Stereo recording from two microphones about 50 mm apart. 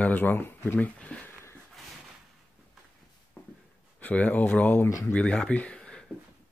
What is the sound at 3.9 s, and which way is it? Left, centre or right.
Speech, left.